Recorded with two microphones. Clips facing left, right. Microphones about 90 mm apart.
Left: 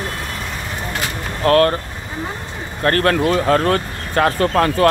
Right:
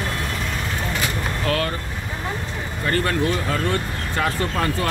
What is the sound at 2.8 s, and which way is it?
Speech, 70° left (ahead or behind).